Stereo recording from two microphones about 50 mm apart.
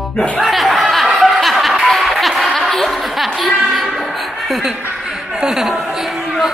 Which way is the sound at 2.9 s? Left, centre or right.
Centre.